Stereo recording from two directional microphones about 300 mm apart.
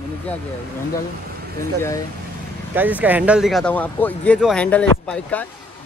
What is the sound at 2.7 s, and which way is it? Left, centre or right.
Speech, centre.